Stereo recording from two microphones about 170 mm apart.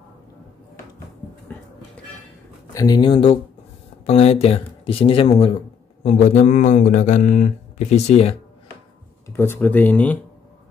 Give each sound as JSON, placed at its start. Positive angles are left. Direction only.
{"t": 2.7, "sound": "speech", "side_deg": 20}
{"t": 6.0, "sound": "speech", "side_deg": 45}
{"t": 9.3, "sound": "speech", "side_deg": 15}